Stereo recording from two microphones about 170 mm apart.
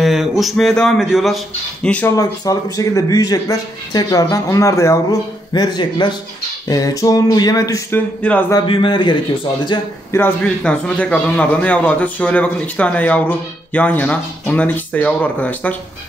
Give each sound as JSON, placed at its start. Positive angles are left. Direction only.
{"t": 0.0, "sound": "a man's voice", "side_deg": 0}
{"t": 2.1, "sound": "speech", "side_deg": 20}
{"t": 10.1, "sound": "a man's voice", "side_deg": 10}